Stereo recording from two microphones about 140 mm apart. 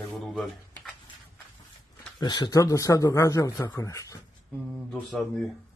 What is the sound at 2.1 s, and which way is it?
Speech, 30° left (ahead or behind).